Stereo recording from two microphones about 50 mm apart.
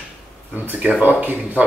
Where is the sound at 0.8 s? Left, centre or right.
Right.